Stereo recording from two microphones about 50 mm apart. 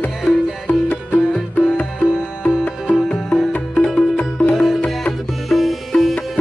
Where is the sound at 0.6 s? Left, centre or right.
Left.